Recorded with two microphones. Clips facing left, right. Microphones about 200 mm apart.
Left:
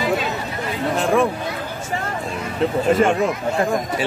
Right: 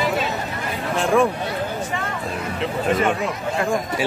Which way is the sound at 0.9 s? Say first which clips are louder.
Even; centre (ahead or behind).